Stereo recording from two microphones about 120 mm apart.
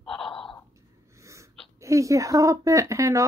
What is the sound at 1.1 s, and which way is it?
Snort, 25° right (ahead or behind).